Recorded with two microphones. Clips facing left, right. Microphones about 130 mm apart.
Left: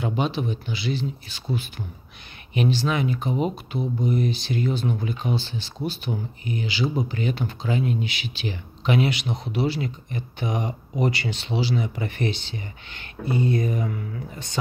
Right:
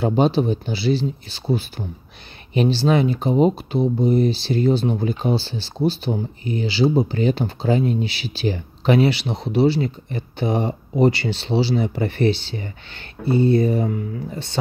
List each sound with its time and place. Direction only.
0.0 s speech: 35° right (ahead or behind)